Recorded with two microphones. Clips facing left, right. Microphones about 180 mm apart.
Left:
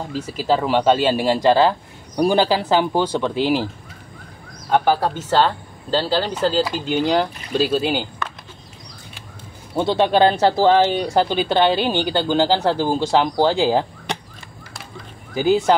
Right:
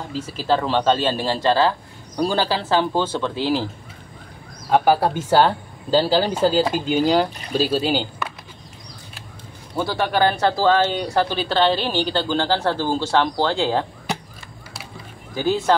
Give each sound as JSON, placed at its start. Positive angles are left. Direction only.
{"t": 0.1, "sound": "speech", "side_deg": 10}
{"t": 4.6, "sound": "speech", "side_deg": -5}
{"t": 9.8, "sound": "speech", "side_deg": 25}
{"t": 15.3, "sound": "speech", "side_deg": 15}